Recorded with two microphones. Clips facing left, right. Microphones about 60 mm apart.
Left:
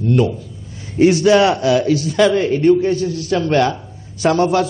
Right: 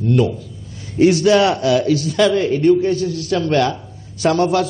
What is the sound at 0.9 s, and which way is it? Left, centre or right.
A man's voice, left.